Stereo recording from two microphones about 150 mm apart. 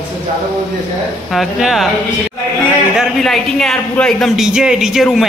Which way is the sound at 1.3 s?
Centre (ahead or behind).